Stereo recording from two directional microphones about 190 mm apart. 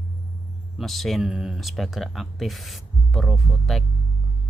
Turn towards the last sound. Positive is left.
turn(degrees=0)  # may be behind; listen again after turning